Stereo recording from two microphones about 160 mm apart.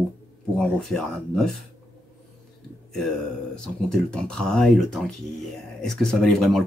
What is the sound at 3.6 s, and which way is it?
Speech, 5° left (ahead or behind).